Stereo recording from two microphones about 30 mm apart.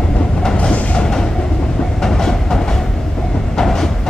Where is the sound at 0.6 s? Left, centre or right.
Left.